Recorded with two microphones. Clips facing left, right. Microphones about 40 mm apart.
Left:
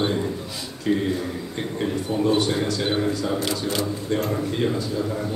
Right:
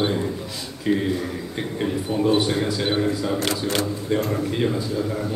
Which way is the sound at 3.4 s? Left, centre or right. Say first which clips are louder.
Right 2 dB; right.